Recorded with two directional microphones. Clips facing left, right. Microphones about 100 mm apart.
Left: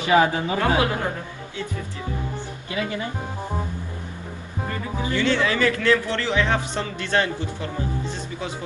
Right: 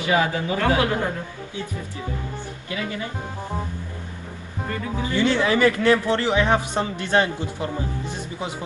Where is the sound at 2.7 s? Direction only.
25° left (ahead or behind).